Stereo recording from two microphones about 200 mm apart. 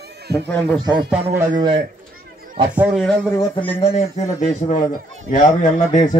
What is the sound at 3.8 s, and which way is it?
Speech, 30° left (ahead or behind).